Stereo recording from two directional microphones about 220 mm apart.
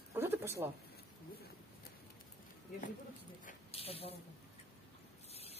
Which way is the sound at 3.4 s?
25° left (ahead or behind).